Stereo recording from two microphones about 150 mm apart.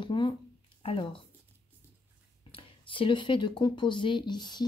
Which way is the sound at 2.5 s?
35° left (ahead or behind).